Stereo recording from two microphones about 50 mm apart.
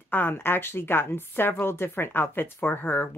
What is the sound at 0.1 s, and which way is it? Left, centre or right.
A woman's voice, left.